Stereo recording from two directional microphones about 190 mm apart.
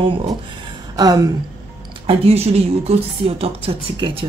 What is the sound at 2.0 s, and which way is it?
A woman's voice, 30° right (ahead or behind).